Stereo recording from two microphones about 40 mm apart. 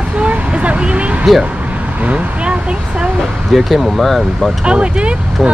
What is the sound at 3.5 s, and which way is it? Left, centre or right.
Speech, centre.